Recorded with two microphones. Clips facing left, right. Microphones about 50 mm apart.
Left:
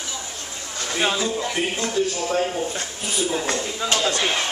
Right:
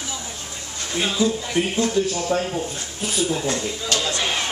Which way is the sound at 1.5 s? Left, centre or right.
Centre.